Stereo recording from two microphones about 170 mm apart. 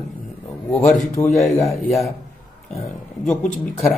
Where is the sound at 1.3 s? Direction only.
Centre (ahead or behind).